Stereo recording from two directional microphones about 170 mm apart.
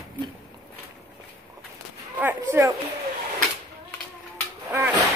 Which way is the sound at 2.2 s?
15° right (ahead or behind).